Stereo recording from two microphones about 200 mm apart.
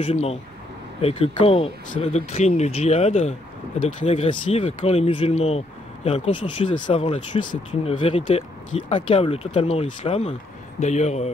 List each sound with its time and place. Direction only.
0.0 s speech: 30° left (ahead or behind)